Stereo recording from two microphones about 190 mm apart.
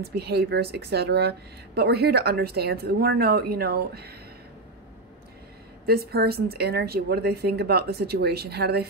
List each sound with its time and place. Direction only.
0.0 s speech: 55° right (ahead or behind)
5.9 s speech: 55° right (ahead or behind)